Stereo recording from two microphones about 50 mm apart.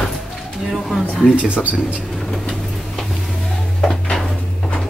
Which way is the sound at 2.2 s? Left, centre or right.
Centre.